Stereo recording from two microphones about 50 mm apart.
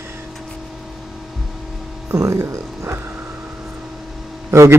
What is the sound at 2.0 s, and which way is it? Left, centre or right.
Music, right.